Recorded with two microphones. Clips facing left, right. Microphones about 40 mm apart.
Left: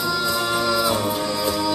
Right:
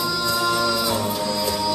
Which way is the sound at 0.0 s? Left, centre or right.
Centre.